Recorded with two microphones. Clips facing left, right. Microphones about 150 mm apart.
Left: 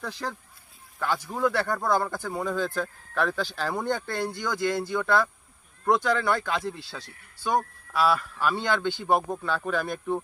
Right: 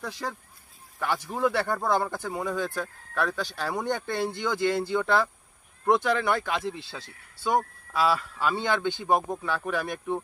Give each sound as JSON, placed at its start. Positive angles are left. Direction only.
{"t": 0.0, "sound": "speech", "side_deg": 0}
{"t": 0.9, "sound": "speech", "side_deg": -15}
{"t": 2.4, "sound": "speech", "side_deg": -10}
{"t": 9.9, "sound": "speech", "side_deg": 5}